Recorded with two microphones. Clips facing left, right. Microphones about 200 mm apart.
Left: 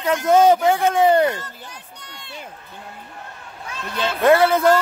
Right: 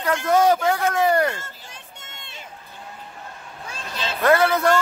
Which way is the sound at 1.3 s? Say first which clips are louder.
Left 4 dB; 25° right (ahead or behind).